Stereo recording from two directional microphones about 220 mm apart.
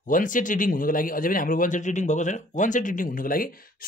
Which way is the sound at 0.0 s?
35° left (ahead or behind).